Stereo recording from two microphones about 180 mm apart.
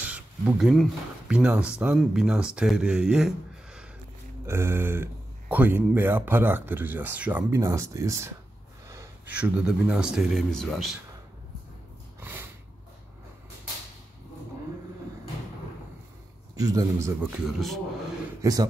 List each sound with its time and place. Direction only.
0.0 s a sound: 5° right (ahead or behind)
1.3 s speech: 5° right (ahead or behind)
4.5 s speech: 15° right (ahead or behind)
12.2 s a sound: 10° right (ahead or behind)
16.5 s speech: 20° right (ahead or behind); by 17.7 s centre (ahead or behind)
18.4 s a man's voice: 20° right (ahead or behind)